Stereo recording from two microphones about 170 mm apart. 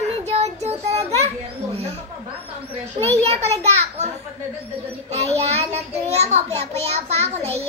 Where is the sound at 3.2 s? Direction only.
40° right (ahead or behind).